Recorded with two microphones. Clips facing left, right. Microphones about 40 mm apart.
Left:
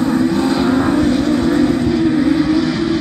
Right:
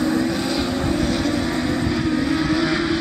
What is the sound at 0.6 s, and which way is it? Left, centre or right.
Vehicle, left.